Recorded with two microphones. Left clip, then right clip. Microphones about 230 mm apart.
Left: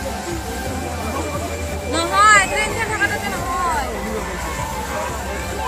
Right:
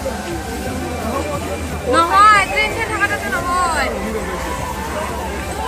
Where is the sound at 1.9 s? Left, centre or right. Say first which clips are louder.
Right 3 dB; left.